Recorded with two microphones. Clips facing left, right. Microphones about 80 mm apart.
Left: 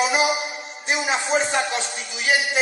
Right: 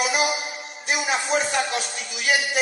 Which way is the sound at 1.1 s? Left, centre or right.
Left.